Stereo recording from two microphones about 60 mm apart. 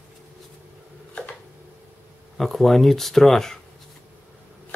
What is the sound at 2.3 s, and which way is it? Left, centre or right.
Speech, centre.